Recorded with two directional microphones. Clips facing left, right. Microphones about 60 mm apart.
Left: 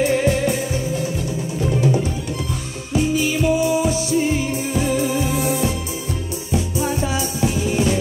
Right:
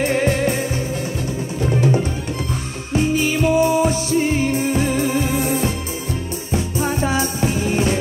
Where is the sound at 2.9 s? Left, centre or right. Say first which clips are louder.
Right 1 dB; right.